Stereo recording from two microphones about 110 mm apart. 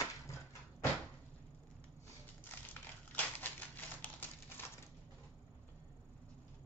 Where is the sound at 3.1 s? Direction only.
15° left (ahead or behind).